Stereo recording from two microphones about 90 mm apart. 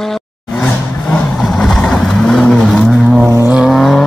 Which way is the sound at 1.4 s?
5° left (ahead or behind).